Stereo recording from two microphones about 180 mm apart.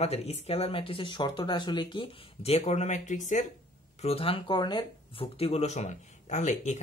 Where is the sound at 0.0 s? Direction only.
35° left (ahead or behind).